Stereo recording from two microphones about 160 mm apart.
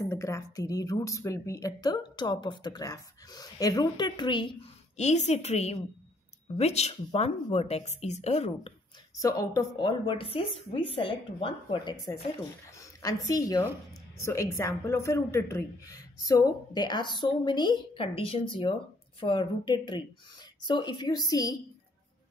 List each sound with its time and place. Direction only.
0.0 s a woman's voice: 20° left (ahead or behind)
4.9 s speech: 45° left (ahead or behind)
9.2 s a woman's voice: 20° left (ahead or behind)